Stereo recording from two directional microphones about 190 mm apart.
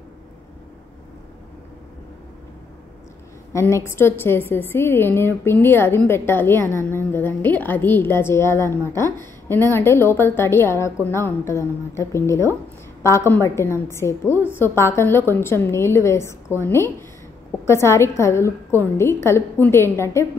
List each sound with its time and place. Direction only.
3.5 s a woman's voice: 15° left (ahead or behind)